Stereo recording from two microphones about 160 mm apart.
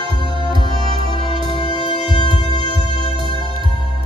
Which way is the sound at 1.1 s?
30° left (ahead or behind).